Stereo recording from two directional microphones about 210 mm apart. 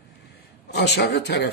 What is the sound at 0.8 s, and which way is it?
Speech, 55° left (ahead or behind).